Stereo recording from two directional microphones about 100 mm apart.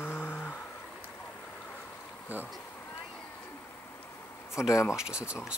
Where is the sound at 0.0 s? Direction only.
20° left (ahead or behind).